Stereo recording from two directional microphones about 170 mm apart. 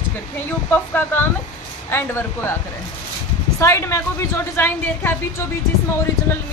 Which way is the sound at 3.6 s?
15° left (ahead or behind).